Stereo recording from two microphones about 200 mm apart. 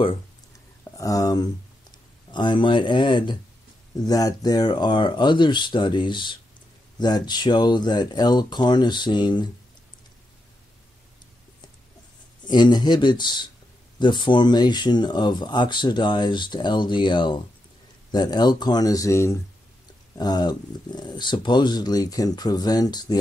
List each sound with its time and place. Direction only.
0.9 s speech: 15° left (ahead or behind)
12.4 s speech: 20° left (ahead or behind)